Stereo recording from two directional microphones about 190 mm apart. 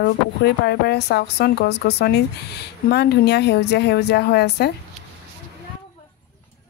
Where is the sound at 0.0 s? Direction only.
60° left (ahead or behind).